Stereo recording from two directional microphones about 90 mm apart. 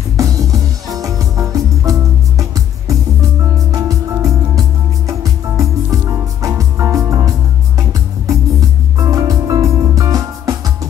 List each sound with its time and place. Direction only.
0.2 s music: 40° right (ahead or behind)
3.5 s music: 35° right (ahead or behind)